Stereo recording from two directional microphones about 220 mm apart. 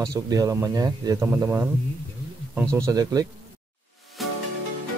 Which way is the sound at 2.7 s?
15° right (ahead or behind).